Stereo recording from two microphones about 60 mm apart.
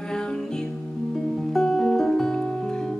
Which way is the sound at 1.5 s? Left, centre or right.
Centre.